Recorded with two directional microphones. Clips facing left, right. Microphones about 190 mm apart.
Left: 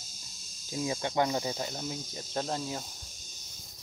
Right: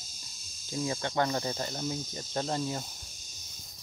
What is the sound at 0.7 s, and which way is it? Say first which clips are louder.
Speech: left 1 dB; 15° left (ahead or behind).